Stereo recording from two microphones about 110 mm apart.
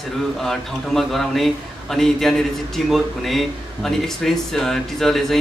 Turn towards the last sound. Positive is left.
turn(degrees=5)  # may be behind; listen again after turning